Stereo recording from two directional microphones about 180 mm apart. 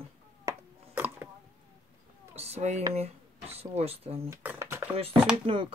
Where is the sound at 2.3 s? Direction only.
35° right (ahead or behind).